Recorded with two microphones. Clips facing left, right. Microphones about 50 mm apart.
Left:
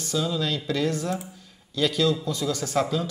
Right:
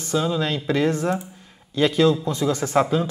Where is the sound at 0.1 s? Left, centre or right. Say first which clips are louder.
Right 4 dB; right.